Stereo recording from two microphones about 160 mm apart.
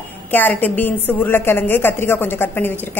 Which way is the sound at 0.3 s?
10° left (ahead or behind).